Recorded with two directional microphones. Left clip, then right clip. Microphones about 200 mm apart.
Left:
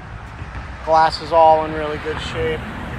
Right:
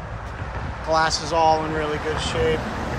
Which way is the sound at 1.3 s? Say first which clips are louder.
Left 7 dB; 5° left (ahead or behind).